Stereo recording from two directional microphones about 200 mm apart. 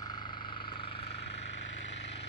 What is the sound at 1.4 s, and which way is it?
Vehicle, 65° left (ahead or behind).